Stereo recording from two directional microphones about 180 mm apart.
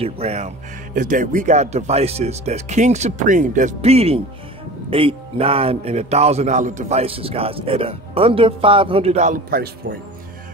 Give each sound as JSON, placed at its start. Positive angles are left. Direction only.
{"t": 0.0, "sound": "a man's voice", "side_deg": -35}
{"t": 0.9, "sound": "a man's voice", "side_deg": -45}